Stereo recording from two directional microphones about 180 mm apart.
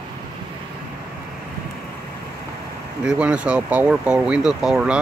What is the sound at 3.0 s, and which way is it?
Speech, 5° right (ahead or behind).